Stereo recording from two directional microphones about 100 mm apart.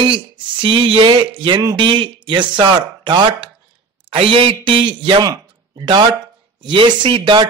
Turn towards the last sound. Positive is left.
turn(degrees=-55)  # may be behind; listen again after turning